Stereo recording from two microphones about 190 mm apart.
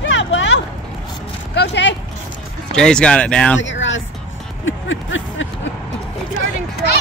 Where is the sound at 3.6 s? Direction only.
80° left.